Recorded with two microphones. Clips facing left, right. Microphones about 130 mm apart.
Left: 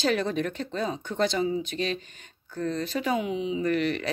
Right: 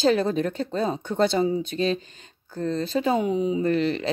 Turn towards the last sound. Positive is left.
turn(degrees=-30)  # may be behind; listen again after turning